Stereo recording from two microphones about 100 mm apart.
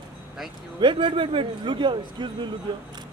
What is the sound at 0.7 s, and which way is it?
A man's voice, 55° right (ahead or behind).